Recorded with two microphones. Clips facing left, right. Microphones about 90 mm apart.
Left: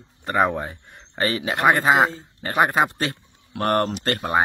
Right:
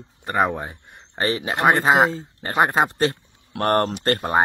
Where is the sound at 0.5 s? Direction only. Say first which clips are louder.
Left 2 dB; 20° right (ahead or behind).